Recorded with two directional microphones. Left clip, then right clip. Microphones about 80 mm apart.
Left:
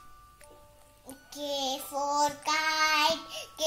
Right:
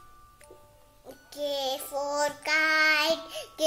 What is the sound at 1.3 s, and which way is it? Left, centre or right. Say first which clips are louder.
Music: right 2 dB; right.